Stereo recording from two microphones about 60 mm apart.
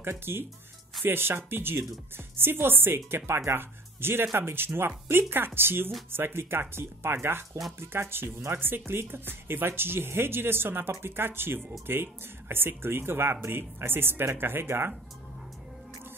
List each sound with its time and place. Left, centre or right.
0.1 s speech: right